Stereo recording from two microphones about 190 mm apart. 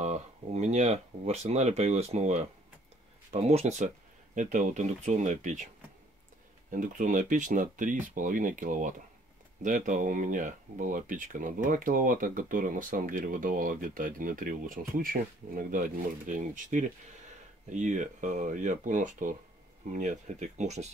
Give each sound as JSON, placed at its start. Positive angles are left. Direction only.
{"t": 0.0, "sound": "speech", "side_deg": -35}
{"t": 6.7, "sound": "speech", "side_deg": -45}